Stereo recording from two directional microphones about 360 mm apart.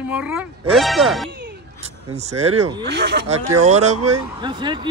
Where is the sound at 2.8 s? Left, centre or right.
Right; by 4.7 s centre.